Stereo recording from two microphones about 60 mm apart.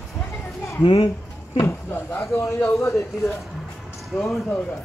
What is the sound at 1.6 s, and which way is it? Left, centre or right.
Speech, left.